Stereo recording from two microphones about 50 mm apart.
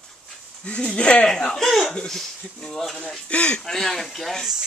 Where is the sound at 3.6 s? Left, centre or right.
Centre.